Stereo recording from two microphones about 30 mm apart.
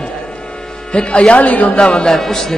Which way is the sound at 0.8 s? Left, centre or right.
Left.